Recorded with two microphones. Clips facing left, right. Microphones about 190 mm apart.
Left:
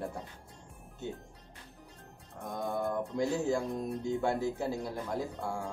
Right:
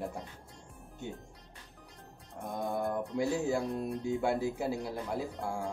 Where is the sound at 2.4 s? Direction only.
15° right (ahead or behind).